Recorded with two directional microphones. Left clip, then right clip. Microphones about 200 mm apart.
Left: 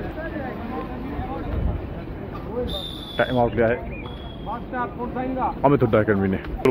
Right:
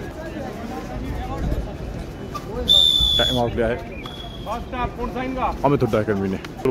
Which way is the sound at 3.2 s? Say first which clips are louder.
Even; 5° right (ahead or behind).